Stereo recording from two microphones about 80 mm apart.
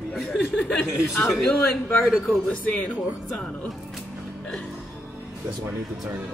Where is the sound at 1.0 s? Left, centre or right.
Left.